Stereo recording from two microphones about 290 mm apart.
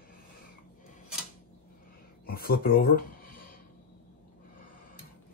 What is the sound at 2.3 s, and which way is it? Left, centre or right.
Speech, left.